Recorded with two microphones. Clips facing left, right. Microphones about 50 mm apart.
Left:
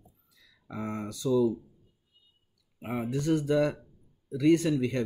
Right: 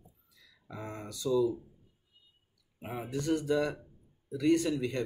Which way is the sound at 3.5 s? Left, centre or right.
Left.